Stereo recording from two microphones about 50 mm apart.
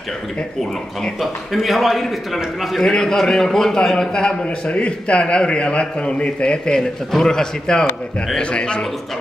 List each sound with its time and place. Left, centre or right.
1.2 s a man's voice: centre
2.8 s a man's voice: centre